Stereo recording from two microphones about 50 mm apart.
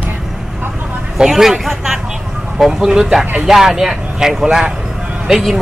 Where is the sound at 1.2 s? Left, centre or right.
Centre.